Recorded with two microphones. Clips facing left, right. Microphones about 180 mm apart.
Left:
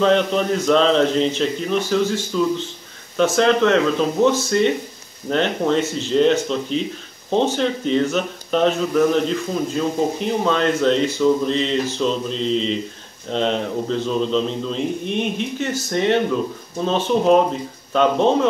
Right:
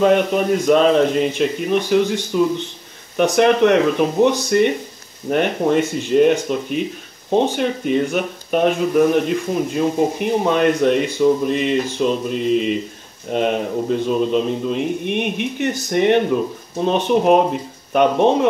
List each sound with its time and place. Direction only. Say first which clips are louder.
0.0 s speech: right 2 dB; 10° right (ahead or behind)